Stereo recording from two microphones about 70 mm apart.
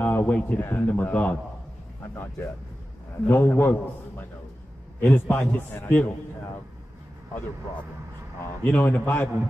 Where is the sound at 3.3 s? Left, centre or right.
Left.